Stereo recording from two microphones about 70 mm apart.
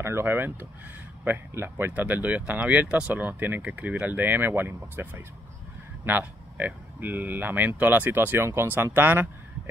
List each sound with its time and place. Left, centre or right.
0.0 s speech: right